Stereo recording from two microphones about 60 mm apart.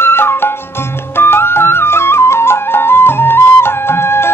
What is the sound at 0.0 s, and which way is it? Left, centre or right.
Music, left.